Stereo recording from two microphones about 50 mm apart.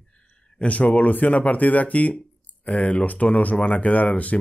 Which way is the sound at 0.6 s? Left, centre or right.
Left.